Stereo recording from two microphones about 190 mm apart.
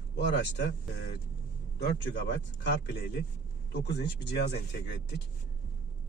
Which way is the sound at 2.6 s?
70° left (ahead or behind).